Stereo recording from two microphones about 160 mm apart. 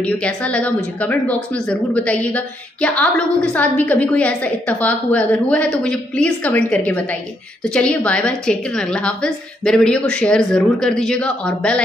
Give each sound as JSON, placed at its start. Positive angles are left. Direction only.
{"t": 0.0, "sound": "a woman's voice", "side_deg": 5}